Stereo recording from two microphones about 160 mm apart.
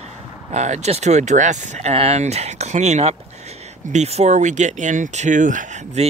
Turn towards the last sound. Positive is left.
turn(degrees=-50)  # may be behind; listen again after turning